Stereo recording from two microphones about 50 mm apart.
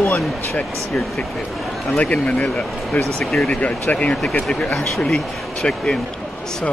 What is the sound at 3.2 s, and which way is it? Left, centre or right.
Speech, centre.